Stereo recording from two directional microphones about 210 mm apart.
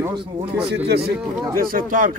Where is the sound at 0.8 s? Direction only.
50° right (ahead or behind).